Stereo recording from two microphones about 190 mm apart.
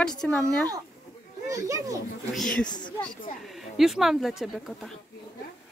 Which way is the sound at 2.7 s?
25° left (ahead or behind).